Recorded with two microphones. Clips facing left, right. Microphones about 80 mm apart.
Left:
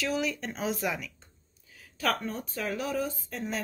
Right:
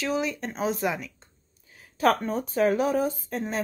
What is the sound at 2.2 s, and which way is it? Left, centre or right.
Speech, right.